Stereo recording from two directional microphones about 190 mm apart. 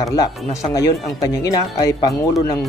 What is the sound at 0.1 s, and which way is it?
Speech, 15° left (ahead or behind).